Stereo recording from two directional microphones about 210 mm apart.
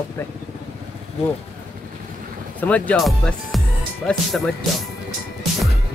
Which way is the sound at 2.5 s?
5° left (ahead or behind).